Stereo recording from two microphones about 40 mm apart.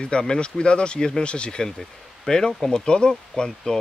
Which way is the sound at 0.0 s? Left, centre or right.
Left.